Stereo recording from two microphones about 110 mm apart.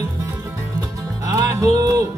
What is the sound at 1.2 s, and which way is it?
Music, 30° right (ahead or behind).